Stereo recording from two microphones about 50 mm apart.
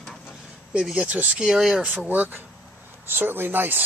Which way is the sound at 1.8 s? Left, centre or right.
Centre.